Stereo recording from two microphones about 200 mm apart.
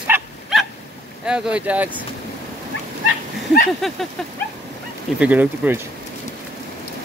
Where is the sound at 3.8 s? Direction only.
Centre (ahead or behind).